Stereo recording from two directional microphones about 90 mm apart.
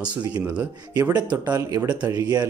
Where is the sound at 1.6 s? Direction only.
30° right (ahead or behind).